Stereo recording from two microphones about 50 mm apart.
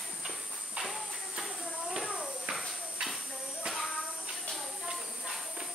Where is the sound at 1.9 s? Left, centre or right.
Centre.